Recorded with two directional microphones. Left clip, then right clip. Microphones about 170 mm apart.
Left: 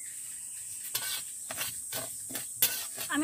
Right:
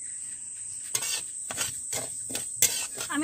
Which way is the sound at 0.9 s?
25° right (ahead or behind).